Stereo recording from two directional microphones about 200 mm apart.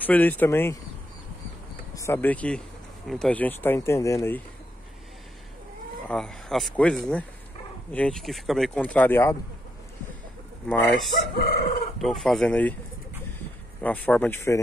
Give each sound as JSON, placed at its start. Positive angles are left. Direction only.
{"t": 0.0, "sound": "speech", "side_deg": 10}
{"t": 2.0, "sound": "speech", "side_deg": 10}
{"t": 6.0, "sound": "speech", "side_deg": 5}
{"t": 10.7, "sound": "speech", "side_deg": 5}
{"t": 11.3, "sound": "chicken", "side_deg": 50}
{"t": 12.0, "sound": "speech", "side_deg": 0}
{"t": 13.8, "sound": "speech", "side_deg": 10}